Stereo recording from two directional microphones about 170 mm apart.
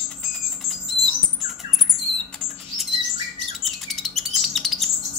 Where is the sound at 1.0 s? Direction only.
5° right (ahead or behind).